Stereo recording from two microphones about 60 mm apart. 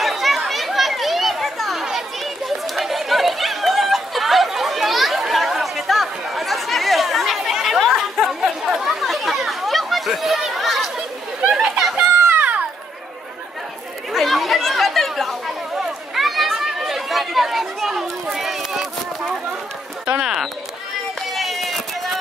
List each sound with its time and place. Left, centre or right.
0.0 s chatter: centre
11.5 s a sound: centre
12.3 s children playing: right
14.1 s chatter: centre
20.1 s a sound: centre
21.3 s run: centre